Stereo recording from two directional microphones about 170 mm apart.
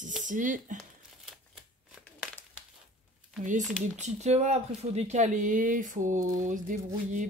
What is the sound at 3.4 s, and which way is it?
Speech, 45° right (ahead or behind).